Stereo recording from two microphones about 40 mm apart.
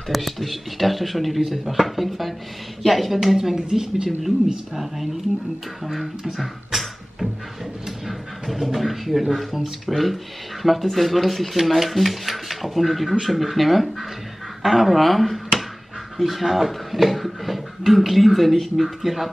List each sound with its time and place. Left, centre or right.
0.1 s speech: centre
3.5 s speech: centre
8.1 s a sound: centre
9.3 s speech: centre